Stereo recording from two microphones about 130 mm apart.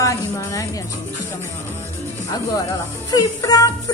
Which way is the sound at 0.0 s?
25° left (ahead or behind).